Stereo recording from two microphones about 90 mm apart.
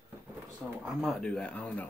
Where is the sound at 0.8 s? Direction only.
Centre (ahead or behind).